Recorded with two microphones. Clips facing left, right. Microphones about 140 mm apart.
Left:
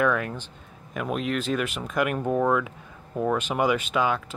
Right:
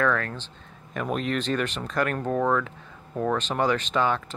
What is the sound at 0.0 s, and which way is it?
Speech, 15° left (ahead or behind).